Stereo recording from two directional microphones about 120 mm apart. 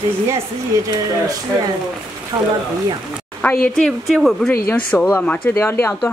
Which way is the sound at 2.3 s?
25° right (ahead or behind).